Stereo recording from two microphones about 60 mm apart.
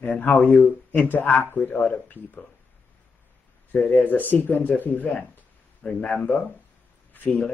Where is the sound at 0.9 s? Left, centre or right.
Left.